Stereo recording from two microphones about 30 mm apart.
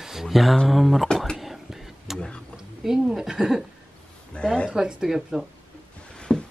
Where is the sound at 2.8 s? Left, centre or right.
Centre.